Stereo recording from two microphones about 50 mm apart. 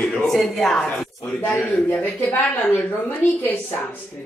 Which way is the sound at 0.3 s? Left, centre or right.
Centre.